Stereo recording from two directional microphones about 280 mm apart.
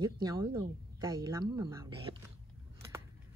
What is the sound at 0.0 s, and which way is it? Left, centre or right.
Speech, centre.